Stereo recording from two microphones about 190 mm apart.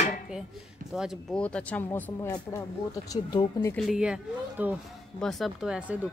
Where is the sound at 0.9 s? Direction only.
Centre (ahead or behind); by 3.7 s 20° left (ahead or behind).